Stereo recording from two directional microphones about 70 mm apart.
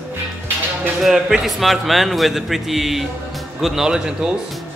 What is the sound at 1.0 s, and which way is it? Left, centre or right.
Speech, centre.